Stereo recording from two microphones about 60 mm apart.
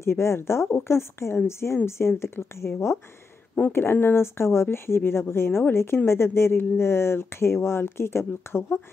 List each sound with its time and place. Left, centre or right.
0.0 s speech: left
3.7 s speech: left